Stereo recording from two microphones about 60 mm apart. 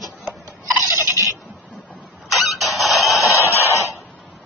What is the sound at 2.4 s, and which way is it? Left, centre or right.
Printer, centre.